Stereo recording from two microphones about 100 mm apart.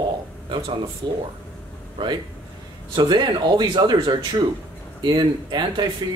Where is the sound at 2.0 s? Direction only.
50° right (ahead or behind).